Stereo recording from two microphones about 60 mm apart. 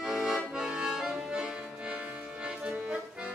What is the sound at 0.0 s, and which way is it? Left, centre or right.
Accordion, centre.